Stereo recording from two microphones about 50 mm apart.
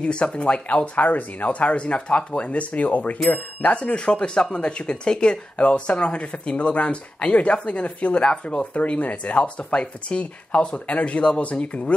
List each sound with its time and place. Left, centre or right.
0.0 s speech: left